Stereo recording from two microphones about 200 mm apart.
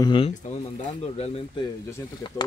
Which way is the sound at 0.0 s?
25° left (ahead or behind).